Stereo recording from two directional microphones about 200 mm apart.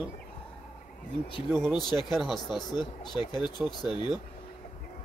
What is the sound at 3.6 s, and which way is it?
Speech, 5° right (ahead or behind).